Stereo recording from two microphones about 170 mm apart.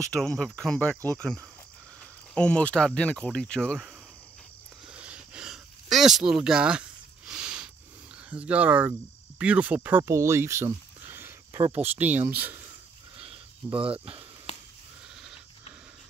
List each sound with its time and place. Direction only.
0.1 s speech: 5° left (ahead or behind)
2.3 s speech: 5° left (ahead or behind)
4.8 s a sound: 5° right (ahead or behind)
8.3 s speech: 10° right (ahead or behind)
11.6 s speech: 40° right (ahead or behind)
11.9 s speech: 10° right (ahead or behind)
13.2 s a sound: 30° right (ahead or behind)